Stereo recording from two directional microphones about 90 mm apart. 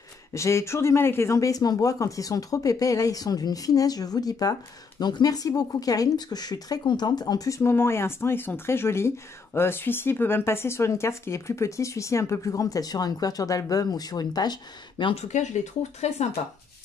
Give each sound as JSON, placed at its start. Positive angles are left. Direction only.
{"t": 0.3, "sound": "speech", "side_deg": 35}